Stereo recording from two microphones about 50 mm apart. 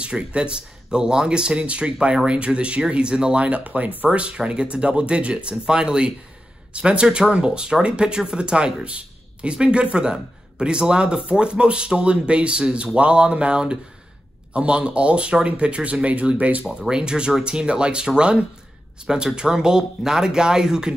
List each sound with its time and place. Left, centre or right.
0.0 s speech: right
16.8 s speech: centre